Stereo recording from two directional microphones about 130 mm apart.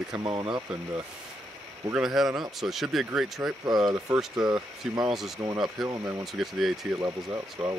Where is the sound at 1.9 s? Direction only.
5° right (ahead or behind).